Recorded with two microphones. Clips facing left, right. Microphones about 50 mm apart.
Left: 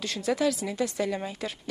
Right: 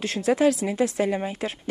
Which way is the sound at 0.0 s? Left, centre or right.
Right.